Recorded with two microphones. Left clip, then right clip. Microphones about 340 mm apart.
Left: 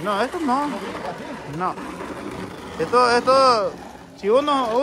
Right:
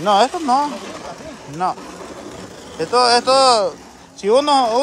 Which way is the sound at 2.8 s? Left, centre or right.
Centre.